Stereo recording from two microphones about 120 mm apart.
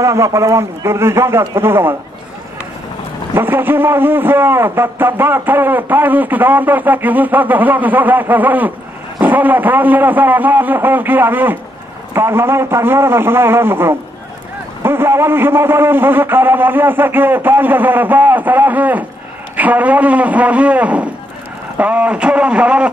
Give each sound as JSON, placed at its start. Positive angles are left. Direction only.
{"t": 0.0, "sound": "a man's voice", "side_deg": -25}
{"t": 3.3, "sound": "a man's voice", "side_deg": -20}